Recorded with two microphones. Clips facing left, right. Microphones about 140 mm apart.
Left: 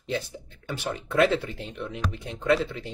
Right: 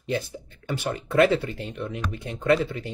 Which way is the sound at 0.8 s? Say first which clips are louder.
Right 2 dB; 50° right (ahead or behind).